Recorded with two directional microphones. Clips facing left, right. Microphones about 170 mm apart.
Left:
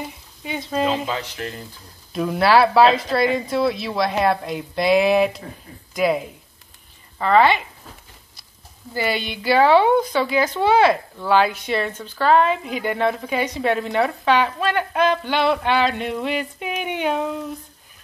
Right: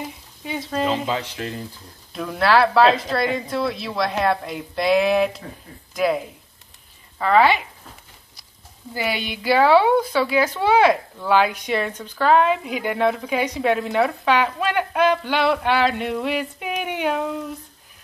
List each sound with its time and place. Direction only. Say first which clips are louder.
0.4 s a woman's voice: left 1 dB; centre (ahead or behind)
1.1 s speech: right 1 dB; 25° right (ahead or behind)
2.1 s a woman's voice: left 2 dB; 10° left (ahead or behind)
7.2 s a woman's voice: left 1 dB; 5° right (ahead or behind)
8.9 s a woman's voice: left 2 dB; 10° right (ahead or behind)